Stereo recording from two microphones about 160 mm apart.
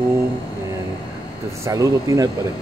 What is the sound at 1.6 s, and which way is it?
Speech, 20° right (ahead or behind).